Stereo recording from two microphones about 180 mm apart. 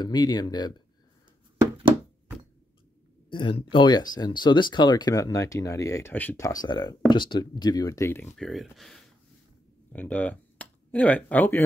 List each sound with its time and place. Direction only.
0.0 s speech: 25° left (ahead or behind)
3.3 s speech: 30° left (ahead or behind)
8.4 s speech: centre (ahead or behind)